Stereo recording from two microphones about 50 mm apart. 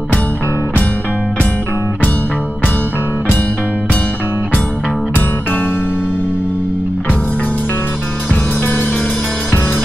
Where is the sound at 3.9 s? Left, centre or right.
Left.